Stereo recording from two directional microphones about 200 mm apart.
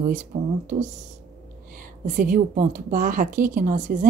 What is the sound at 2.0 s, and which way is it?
A woman's voice, 40° right (ahead or behind).